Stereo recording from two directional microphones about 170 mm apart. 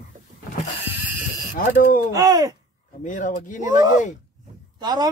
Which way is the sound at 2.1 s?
20° right (ahead or behind).